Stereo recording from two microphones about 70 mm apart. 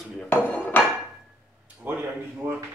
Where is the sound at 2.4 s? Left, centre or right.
Right.